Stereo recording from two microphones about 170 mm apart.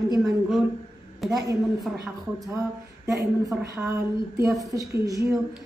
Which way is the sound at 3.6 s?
20° right (ahead or behind).